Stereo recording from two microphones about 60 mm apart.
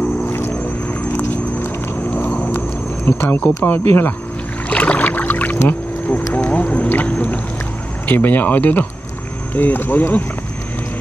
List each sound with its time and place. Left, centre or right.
3.1 s speech: left
4.6 s rowboat: left
5.7 s boat: left
6.3 s music: left
8.1 s speech: left